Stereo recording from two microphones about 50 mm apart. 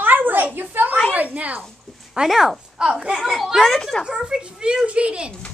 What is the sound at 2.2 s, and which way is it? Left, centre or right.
Speech, centre.